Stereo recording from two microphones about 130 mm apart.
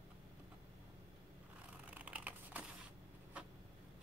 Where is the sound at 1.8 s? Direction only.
10° right (ahead or behind).